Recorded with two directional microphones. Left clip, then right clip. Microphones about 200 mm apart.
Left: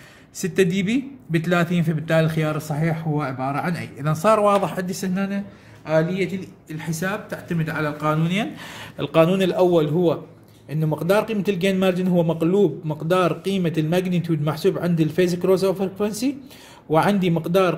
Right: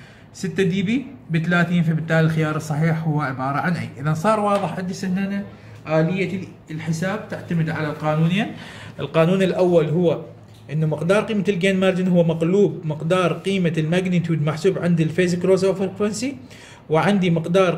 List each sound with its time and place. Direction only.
0.4 s a man's voice: 45° left (ahead or behind)
8.9 s a man's voice: 35° left (ahead or behind)